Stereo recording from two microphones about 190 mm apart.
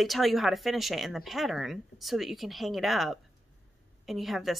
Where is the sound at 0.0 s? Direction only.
Centre (ahead or behind).